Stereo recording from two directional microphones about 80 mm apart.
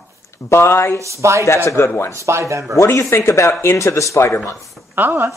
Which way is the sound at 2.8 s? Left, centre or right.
Left.